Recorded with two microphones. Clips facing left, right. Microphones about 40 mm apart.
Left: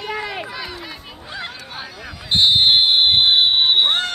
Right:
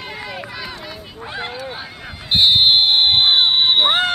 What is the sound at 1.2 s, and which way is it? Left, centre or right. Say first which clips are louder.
Honk: right 5 dB; right.